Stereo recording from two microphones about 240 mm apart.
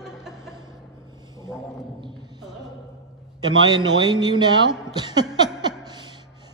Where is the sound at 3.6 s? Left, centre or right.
Centre.